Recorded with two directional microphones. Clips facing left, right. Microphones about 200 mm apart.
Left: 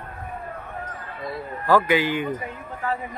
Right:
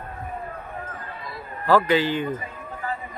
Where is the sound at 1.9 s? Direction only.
10° left (ahead or behind).